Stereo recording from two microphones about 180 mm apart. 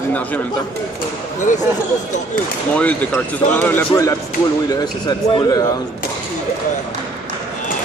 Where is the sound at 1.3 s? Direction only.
45° left (ahead or behind).